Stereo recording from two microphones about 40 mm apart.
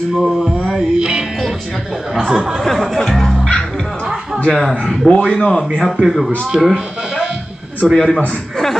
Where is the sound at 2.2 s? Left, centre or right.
Centre.